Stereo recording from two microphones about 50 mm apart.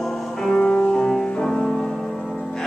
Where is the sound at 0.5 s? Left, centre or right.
Left.